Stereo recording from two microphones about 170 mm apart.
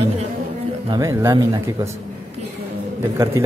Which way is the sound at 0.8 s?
20° right (ahead or behind).